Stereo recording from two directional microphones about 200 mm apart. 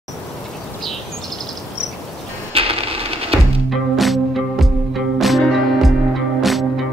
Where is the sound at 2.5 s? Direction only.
30° right (ahead or behind).